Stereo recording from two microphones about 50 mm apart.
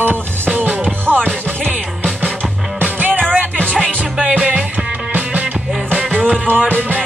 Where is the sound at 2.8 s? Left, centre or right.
Right.